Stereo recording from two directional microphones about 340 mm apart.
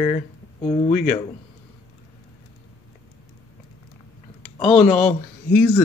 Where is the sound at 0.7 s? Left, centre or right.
Left.